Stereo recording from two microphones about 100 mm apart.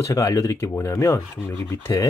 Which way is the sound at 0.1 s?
35° left (ahead or behind).